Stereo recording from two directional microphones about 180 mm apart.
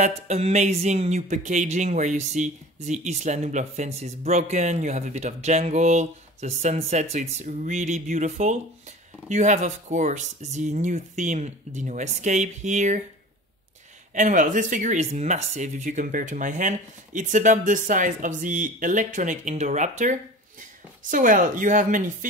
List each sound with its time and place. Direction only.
0.0 s speech: 40° right (ahead or behind)
14.1 s speech: 45° right (ahead or behind)